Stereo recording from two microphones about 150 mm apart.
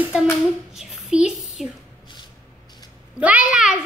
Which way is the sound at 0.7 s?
5° right (ahead or behind).